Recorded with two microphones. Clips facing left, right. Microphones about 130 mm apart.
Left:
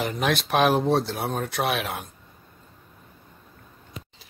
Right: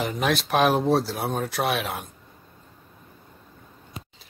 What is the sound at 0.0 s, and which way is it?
Speech, centre (ahead or behind).